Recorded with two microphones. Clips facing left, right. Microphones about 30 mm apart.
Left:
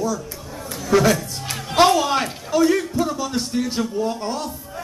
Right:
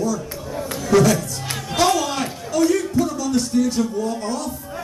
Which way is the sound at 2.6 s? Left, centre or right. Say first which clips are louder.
Right 1 dB; centre.